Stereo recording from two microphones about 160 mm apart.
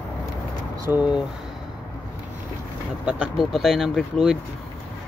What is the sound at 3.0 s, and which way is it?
Speech, 5° right (ahead or behind).